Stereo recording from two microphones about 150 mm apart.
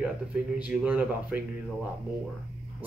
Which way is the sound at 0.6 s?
10° right (ahead or behind).